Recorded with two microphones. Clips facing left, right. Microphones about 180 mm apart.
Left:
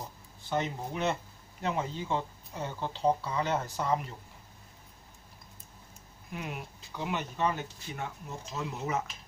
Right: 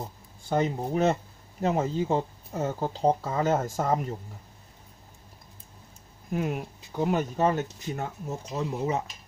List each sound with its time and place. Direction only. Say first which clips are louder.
0.5 s speech: right 6 dB; 40° right (ahead or behind)
6.3 s speech: right 10 dB; 45° right (ahead or behind)